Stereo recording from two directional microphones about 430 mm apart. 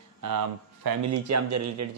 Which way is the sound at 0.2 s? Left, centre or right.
Right.